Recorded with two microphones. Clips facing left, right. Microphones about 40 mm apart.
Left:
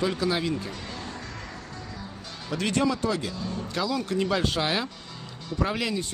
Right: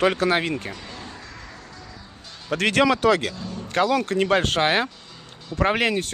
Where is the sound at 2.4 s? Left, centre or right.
Right.